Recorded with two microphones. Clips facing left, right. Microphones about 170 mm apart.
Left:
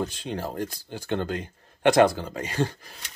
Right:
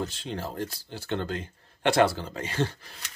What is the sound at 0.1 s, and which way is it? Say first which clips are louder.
Speech: left 3 dB; 15° left (ahead or behind).